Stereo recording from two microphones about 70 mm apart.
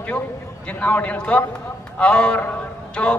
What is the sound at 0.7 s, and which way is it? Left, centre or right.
A man's voice, left.